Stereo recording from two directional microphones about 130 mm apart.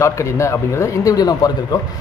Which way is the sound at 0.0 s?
20° left (ahead or behind).